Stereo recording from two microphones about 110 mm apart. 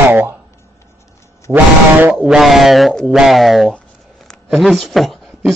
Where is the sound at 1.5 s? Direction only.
15° right (ahead or behind).